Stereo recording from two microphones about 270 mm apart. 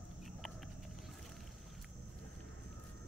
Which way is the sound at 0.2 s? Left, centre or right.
Centre.